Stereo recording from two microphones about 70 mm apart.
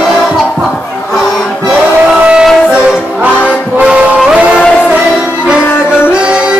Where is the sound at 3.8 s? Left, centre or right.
Centre.